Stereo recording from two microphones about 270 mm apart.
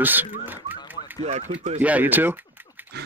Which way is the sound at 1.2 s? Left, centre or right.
Right.